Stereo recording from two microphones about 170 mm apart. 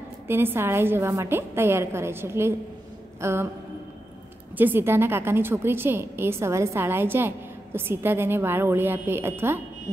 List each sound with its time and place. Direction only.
0.3 s a woman's voice: 15° right (ahead or behind)
4.6 s a woman's voice: 10° right (ahead or behind)